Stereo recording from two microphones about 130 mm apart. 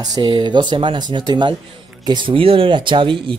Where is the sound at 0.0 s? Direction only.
35° right (ahead or behind).